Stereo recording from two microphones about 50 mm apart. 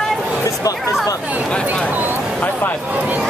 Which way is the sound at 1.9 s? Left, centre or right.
Right.